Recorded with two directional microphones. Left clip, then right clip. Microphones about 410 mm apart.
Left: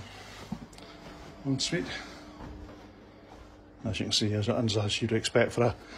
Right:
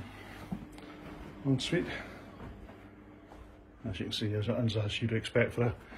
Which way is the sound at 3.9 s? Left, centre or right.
Centre.